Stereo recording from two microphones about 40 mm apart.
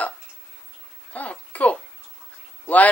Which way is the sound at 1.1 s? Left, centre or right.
Left.